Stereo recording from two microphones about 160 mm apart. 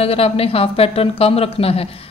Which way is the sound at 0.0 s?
35° left (ahead or behind).